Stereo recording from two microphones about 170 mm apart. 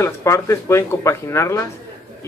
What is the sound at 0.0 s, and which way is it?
A man's voice, 15° left (ahead or behind).